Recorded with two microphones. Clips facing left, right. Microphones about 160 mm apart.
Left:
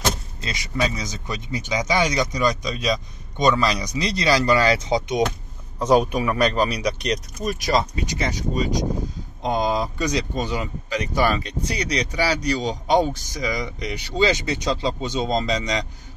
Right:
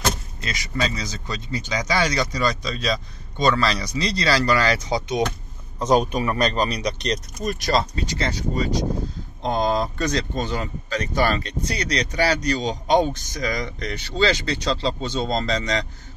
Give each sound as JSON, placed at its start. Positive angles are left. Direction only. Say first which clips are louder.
{"t": 0.4, "sound": "speech", "louder": "left 3 dB", "side_deg": 25}
{"t": 5.8, "sound": "speech", "louder": "left 1 dB", "side_deg": 10}